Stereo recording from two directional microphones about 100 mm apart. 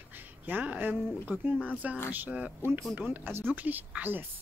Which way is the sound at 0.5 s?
15° right (ahead or behind).